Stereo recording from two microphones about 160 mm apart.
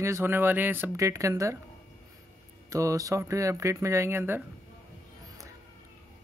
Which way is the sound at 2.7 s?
20° right (ahead or behind).